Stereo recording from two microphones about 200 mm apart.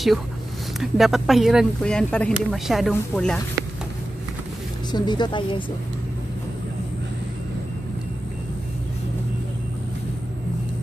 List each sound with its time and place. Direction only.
0.7 s speech: centre (ahead or behind)
4.9 s a woman's voice: 20° left (ahead or behind)